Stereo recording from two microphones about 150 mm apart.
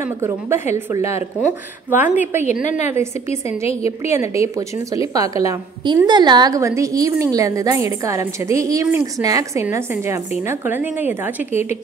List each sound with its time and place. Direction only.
0.2 s a woman's voice: 20° right (ahead or behind)
3.3 s a woman's voice: 45° left (ahead or behind)
4.0 s a woman's voice: 20° right (ahead or behind)